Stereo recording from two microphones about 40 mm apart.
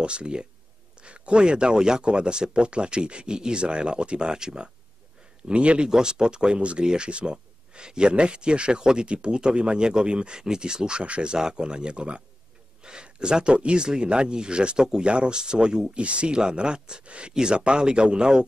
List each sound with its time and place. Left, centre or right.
0.0 s speech: right
5.5 s speech: right
5.9 s speech: centre